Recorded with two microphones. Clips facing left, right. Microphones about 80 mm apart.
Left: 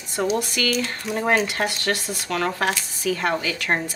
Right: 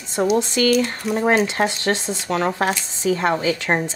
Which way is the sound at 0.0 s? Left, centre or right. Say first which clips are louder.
Right 4 dB; right.